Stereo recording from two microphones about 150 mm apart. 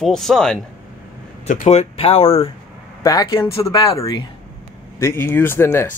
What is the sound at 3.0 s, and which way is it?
Speech, 25° left (ahead or behind).